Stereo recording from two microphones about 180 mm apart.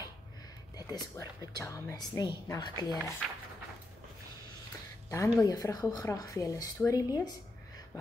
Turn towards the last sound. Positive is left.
turn(degrees=20)  # may be behind; listen again after turning